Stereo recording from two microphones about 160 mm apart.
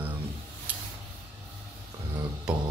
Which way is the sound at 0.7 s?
10° right (ahead or behind).